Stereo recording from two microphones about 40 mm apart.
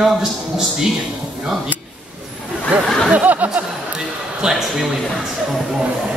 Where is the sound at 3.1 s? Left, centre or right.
Right.